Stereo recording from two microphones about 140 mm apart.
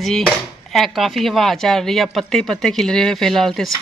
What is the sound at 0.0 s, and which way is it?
Speech, centre (ahead or behind).